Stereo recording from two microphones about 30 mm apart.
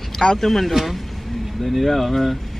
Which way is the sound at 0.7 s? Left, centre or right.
Centre.